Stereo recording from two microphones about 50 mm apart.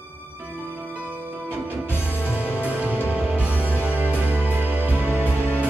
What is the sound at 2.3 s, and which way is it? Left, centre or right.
Music, right.